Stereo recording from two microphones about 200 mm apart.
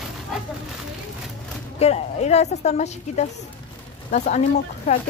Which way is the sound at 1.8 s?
30° left (ahead or behind).